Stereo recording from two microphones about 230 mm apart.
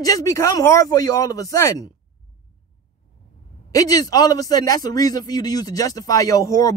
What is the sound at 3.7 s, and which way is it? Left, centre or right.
Speech, centre.